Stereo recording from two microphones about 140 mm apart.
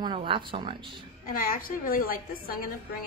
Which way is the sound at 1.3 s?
90° left.